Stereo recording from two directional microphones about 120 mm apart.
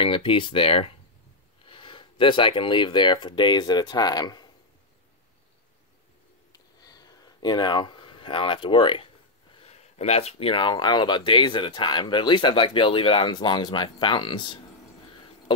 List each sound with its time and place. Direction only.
0.0 s speech: 45° left (ahead or behind)
6.5 s a sound: 30° left (ahead or behind)
9.6 s speech: 60° left (ahead or behind); by 14.6 s 40° left (ahead or behind)